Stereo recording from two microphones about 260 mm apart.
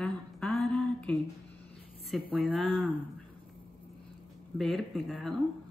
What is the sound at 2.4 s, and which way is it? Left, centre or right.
Speech, centre.